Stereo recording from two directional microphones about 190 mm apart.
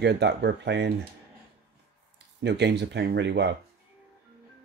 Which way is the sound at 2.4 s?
65° right (ahead or behind).